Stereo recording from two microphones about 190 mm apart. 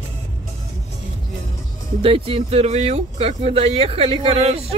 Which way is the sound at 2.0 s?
30° right (ahead or behind).